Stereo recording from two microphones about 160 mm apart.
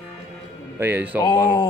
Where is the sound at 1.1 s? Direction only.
20° left (ahead or behind).